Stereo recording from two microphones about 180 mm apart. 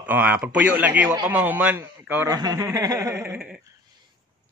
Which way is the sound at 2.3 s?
20° right (ahead or behind).